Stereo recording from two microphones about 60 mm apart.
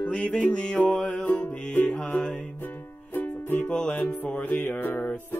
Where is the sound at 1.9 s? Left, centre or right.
Centre.